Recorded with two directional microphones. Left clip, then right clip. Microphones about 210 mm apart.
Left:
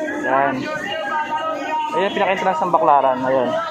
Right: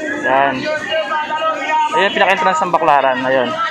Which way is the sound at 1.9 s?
5° left (ahead or behind).